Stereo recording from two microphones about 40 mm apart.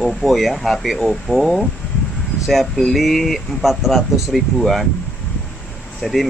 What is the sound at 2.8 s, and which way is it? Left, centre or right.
Speech, centre.